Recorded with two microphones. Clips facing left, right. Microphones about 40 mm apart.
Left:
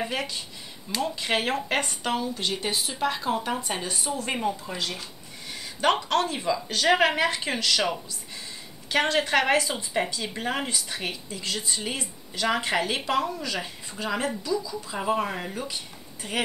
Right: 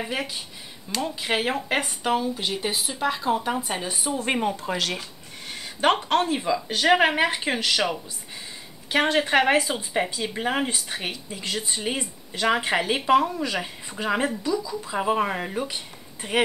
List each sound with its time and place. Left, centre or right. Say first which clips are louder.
0.0 s speech: even; centre
3.9 s speech: right 3 dB; right
4.5 s speech: right 3 dB; right
5.5 s speech: right 2 dB; right
15.5 s speech: right 4 dB; right